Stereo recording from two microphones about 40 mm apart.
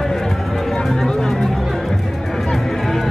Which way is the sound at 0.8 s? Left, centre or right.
Centre.